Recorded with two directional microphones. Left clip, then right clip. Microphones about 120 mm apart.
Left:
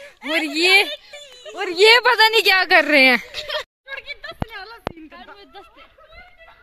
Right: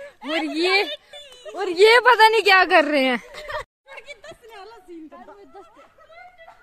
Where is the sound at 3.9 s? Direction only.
55° left (ahead or behind).